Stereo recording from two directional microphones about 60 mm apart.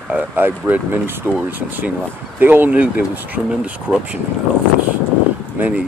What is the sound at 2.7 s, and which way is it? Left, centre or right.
Speech, right.